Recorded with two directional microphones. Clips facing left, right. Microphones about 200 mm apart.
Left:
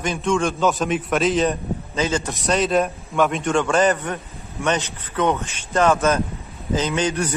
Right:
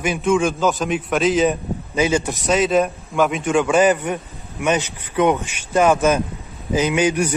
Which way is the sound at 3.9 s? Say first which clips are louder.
Right 4 dB; 15° right (ahead or behind).